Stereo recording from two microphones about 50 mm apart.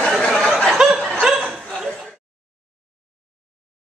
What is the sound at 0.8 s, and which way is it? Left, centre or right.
Chuckle, centre.